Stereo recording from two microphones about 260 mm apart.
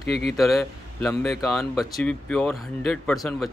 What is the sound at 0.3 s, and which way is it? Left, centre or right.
Speech, centre.